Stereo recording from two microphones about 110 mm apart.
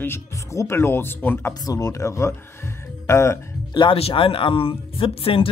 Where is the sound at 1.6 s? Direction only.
30° left (ahead or behind).